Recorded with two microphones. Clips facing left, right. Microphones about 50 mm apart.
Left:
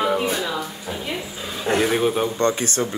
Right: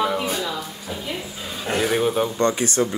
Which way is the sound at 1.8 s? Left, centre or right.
Centre.